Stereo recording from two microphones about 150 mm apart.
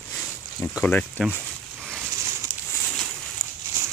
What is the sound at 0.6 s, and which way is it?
Speech, 20° left (ahead or behind).